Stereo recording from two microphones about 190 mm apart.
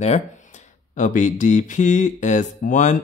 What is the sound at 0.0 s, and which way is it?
Speech, 35° left (ahead or behind).